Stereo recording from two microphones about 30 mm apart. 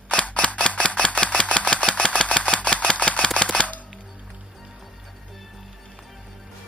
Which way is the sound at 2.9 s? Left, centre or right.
Left.